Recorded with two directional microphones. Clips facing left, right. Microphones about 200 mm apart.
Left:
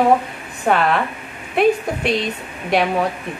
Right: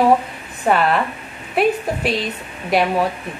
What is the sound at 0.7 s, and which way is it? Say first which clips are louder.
A woman's voice: even; centre (ahead or behind).